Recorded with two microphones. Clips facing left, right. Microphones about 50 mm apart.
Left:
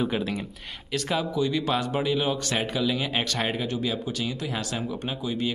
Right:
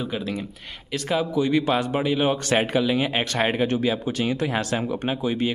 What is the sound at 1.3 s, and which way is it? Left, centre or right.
Speech, right.